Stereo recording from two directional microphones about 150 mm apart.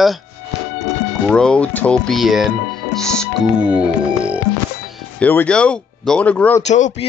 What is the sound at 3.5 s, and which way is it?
Music, 5° right (ahead or behind).